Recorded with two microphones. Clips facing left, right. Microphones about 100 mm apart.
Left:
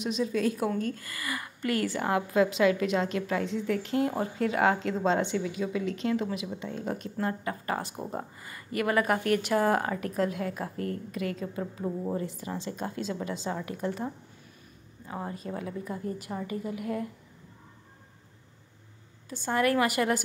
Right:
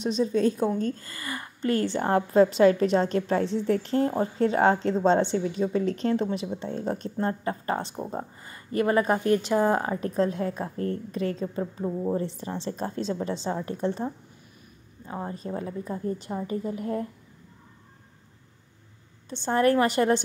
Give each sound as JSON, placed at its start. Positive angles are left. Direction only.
{"t": 0.0, "sound": "a woman's voice", "side_deg": -30}
{"t": 11.8, "sound": "a woman's voice", "side_deg": -15}
{"t": 12.2, "sound": "a woman's voice", "side_deg": -30}
{"t": 15.2, "sound": "a woman's voice", "side_deg": -30}
{"t": 19.2, "sound": "a woman's voice", "side_deg": -30}